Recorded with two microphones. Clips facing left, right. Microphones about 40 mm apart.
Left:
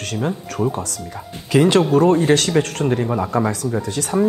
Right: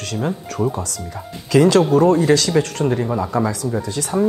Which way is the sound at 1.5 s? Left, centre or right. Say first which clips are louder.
Right 1 dB; left.